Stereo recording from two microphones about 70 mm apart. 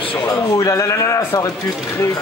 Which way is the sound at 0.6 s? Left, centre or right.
Left.